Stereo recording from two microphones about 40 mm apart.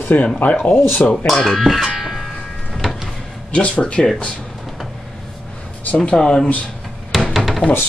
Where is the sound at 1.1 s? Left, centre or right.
Centre.